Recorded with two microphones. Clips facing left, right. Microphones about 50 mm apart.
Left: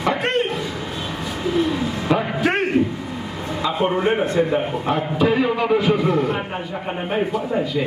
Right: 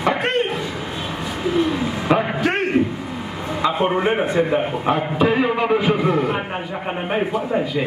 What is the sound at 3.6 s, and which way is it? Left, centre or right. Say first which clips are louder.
A man's voice: right 1 dB; centre.